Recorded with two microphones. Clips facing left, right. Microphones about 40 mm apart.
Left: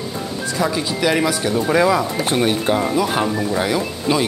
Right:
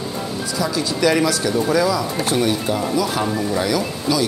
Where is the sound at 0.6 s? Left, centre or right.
Left.